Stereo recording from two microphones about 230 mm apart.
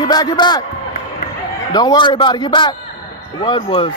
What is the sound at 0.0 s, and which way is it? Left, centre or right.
Speech, centre.